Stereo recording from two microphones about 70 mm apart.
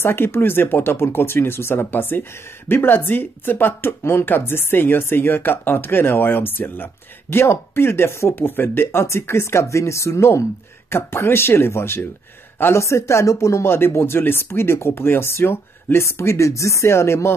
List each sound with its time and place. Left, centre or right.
0.0 s a man's voice: left
12.8 s speech: left